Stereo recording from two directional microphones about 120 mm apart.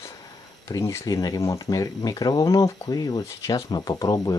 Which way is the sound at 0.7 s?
30° left (ahead or behind).